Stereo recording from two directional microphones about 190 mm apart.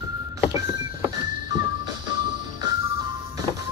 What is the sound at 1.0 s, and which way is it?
Music, 20° right (ahead or behind).